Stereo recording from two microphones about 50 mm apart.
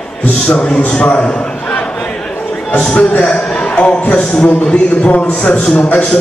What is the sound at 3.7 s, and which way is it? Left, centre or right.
A man's voice, left.